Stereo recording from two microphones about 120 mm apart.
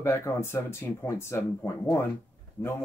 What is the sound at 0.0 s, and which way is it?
Speech, 20° left (ahead or behind).